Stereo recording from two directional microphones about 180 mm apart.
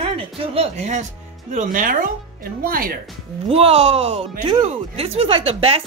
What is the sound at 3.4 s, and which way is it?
Speech, 35° right (ahead or behind).